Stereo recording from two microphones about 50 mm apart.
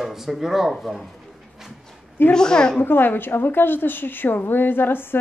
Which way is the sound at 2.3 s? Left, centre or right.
Centre.